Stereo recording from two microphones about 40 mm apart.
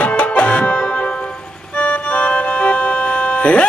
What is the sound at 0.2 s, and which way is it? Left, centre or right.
Music, left.